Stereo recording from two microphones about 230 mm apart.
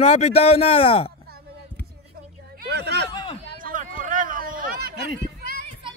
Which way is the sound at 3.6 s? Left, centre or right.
Right.